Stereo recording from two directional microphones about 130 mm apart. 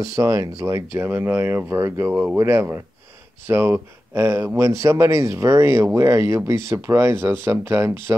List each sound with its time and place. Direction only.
0.0 s speech: 25° right (ahead or behind)